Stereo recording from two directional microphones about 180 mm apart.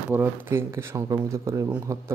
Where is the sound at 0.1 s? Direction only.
15° right (ahead or behind).